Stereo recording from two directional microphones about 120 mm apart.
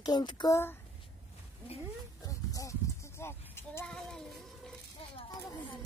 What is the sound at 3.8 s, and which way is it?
Child singing, 5° left (ahead or behind).